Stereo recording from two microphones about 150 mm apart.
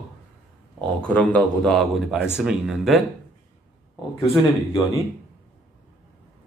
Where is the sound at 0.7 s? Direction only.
10° left (ahead or behind).